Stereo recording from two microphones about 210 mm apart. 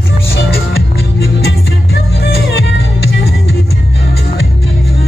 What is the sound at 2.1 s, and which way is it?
Music, 50° left (ahead or behind).